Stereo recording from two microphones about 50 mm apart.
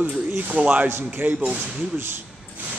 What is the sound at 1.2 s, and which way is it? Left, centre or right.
Speech, right.